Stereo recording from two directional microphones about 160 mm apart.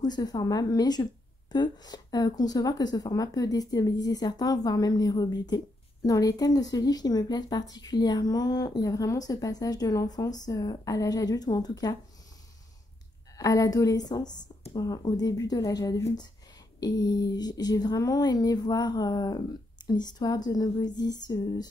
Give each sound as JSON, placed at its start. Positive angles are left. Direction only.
{"t": 0.0, "sound": "a woman's voice", "side_deg": 25}
{"t": 13.4, "sound": "a woman's voice", "side_deg": 20}